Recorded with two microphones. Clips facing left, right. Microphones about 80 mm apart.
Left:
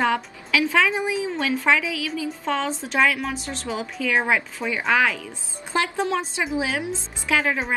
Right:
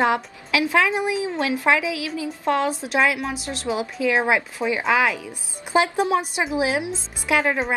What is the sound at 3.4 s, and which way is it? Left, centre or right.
Speech, left.